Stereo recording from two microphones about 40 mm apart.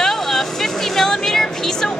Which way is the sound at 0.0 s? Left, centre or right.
Centre.